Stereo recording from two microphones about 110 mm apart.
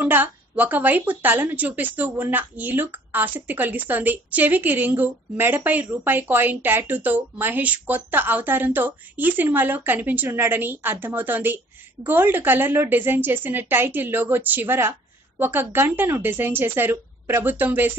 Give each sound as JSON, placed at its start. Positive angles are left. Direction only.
{"t": 0.0, "sound": "a woman's voice", "side_deg": -15}